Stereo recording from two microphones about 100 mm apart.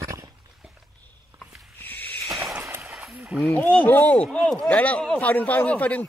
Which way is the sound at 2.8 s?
5° right (ahead or behind).